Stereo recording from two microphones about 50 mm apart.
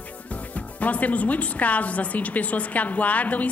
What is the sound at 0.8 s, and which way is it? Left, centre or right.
Speech, left.